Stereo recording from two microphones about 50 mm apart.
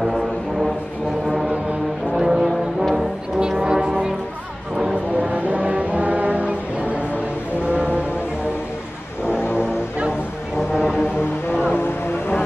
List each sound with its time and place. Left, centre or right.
0.0 s foghorn: centre
2.1 s brass instrument: centre
3.3 s foghorn: centre
5.2 s foghorn: right
7.6 s vehicle: right
9.6 s music: centre
10.7 s foghorn: centre
11.7 s a sound: left